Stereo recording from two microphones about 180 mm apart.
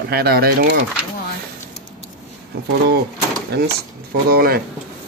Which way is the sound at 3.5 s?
65° right (ahead or behind).